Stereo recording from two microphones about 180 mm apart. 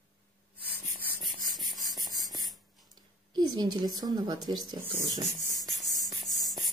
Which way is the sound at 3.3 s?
20° right (ahead or behind).